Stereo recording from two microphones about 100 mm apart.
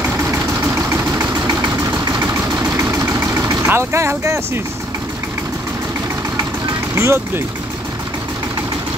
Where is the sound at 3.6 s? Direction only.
25° right (ahead or behind).